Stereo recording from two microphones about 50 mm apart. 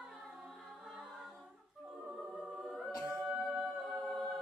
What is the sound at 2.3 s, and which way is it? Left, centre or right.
A capella, centre.